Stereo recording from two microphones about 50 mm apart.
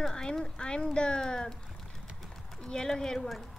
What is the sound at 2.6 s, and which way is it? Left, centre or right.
Speech, centre.